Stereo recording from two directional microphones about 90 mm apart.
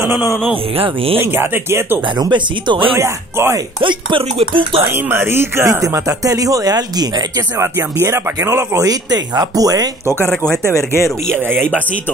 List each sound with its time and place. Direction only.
0.0 s a man's voice: 25° right (ahead or behind)
0.7 s speech: 90° right
1.1 s speech: 25° right (ahead or behind)
2.1 s speech: 55° right (ahead or behind)
3.0 s speech: 30° right (ahead or behind)
3.8 s speech: 70° right (ahead or behind)
4.9 s speech: 25° right (ahead or behind); by 7.1 s 45° right (ahead or behind)
7.5 s speech: 30° right (ahead or behind)
8.8 s speech: 45° right (ahead or behind)
10.7 s speech: 30° left (ahead or behind)
11.2 s speech: 25° right (ahead or behind)